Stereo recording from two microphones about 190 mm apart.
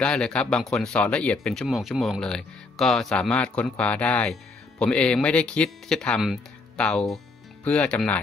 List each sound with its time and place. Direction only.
0.0 s speech: 5° left (ahead or behind)